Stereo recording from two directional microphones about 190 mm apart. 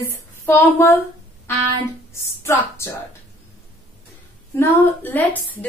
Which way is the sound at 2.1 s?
15° left (ahead or behind).